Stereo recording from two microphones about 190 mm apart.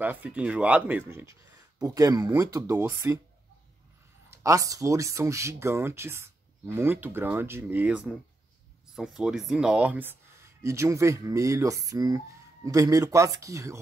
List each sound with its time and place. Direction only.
0.0 s speech: 10° right (ahead or behind)
4.3 s speech: 15° right (ahead or behind)